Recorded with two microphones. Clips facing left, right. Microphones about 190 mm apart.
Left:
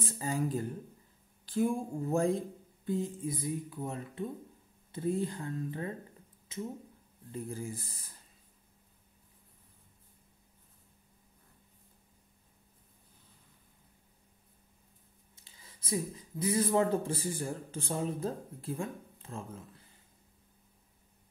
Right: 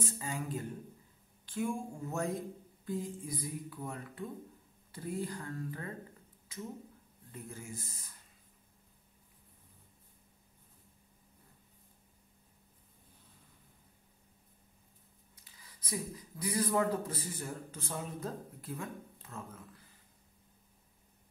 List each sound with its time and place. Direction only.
0.0 s a woman's voice: 35° left (ahead or behind)
15.3 s speech: 25° left (ahead or behind)